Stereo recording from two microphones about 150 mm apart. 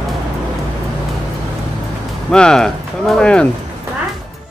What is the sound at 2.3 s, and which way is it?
Speech, 5° left (ahead or behind).